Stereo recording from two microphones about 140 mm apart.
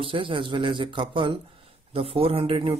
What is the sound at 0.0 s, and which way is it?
Speech, 40° right (ahead or behind).